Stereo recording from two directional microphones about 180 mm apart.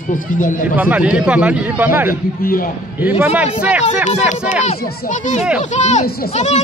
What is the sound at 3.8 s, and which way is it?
Speech, 40° left (ahead or behind).